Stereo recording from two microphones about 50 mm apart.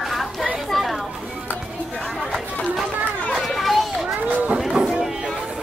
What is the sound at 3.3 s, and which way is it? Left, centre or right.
Children playing, centre.